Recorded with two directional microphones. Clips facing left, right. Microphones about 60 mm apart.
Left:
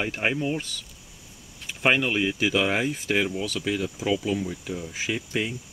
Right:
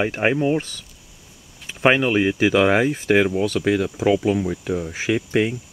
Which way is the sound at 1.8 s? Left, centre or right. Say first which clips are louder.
Right 6 dB; right.